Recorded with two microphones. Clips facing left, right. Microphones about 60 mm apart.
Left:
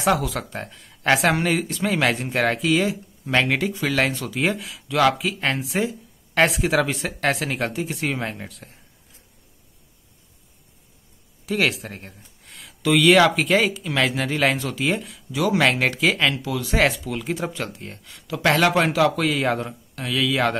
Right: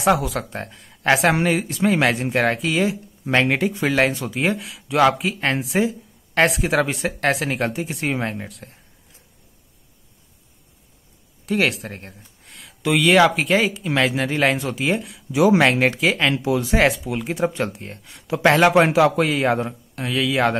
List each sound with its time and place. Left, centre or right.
0.0 s a man's voice: centre
4.8 s speech: centre
11.4 s a man's voice: centre
15.3 s a man's voice: right
16.3 s speech: right
16.7 s a man's voice: centre
18.2 s a man's voice: right